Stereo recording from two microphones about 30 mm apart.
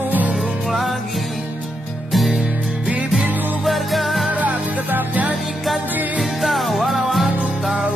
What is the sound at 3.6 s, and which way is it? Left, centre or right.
Music, centre.